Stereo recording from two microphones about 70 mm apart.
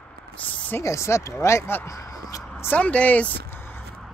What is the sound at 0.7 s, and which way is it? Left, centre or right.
Speech, left.